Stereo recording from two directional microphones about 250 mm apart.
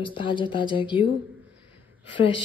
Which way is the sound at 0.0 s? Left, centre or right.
Centre.